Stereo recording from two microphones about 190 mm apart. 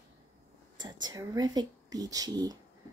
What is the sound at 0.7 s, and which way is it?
Speech, 20° right (ahead or behind).